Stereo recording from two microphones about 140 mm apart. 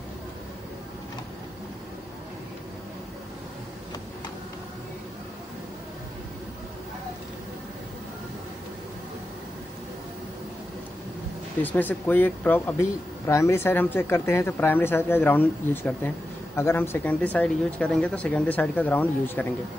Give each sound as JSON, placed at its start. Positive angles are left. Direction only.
{"t": 11.6, "sound": "speech", "side_deg": 10}